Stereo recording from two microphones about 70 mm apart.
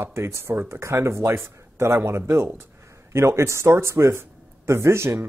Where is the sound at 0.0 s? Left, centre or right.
Right.